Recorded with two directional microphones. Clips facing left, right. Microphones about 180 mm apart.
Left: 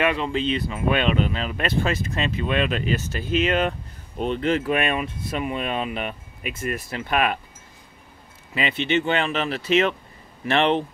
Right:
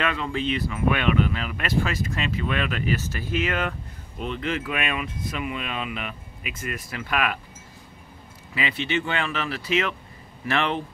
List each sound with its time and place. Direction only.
0.0 s speech: 20° left (ahead or behind)
4.2 s speech: 35° left (ahead or behind)
8.5 s speech: 25° left (ahead or behind)